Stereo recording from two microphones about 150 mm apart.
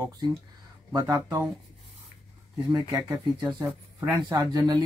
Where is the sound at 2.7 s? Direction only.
25° right (ahead or behind).